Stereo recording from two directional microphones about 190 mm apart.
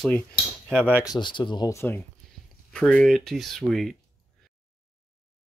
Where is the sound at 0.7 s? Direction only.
10° right (ahead or behind).